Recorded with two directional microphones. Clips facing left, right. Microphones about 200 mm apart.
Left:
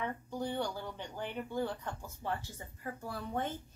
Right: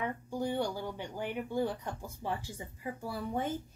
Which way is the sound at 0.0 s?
10° right (ahead or behind).